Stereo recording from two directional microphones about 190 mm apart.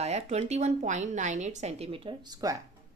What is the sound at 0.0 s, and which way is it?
A woman's voice, 35° right (ahead or behind).